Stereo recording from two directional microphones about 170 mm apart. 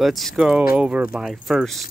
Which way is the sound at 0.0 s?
Centre (ahead or behind).